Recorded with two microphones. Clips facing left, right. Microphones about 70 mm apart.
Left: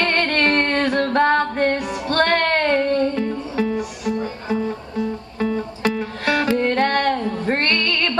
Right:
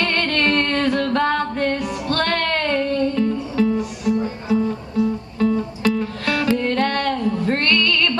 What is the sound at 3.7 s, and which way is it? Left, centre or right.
Music, left.